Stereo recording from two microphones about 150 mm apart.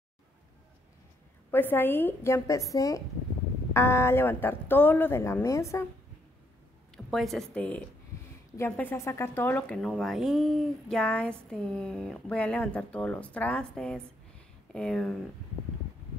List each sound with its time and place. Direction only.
1.5 s speech: 15° left (ahead or behind)
7.1 s a woman's voice: centre (ahead or behind)